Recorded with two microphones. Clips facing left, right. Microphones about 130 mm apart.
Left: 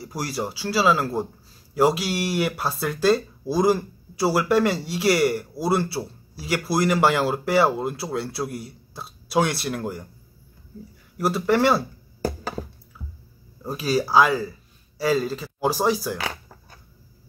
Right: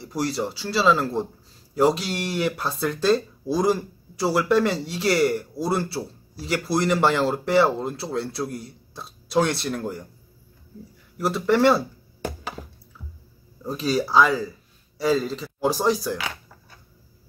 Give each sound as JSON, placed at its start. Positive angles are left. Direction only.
{"t": 0.0, "sound": "speech", "side_deg": 5}
{"t": 11.1, "sound": "speech", "side_deg": 5}
{"t": 12.2, "sound": "a sound", "side_deg": 35}
{"t": 13.7, "sound": "speech", "side_deg": 5}